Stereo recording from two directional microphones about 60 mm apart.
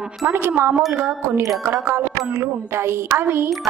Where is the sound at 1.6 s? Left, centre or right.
Right.